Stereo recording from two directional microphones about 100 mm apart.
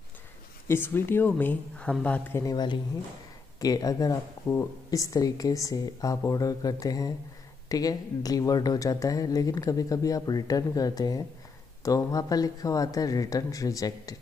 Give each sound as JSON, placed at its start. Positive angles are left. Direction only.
{"t": 0.7, "sound": "speech", "side_deg": 20}
{"t": 2.5, "sound": "speech", "side_deg": 50}